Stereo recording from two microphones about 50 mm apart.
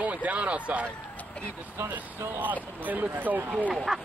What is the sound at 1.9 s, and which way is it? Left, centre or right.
Speech, right.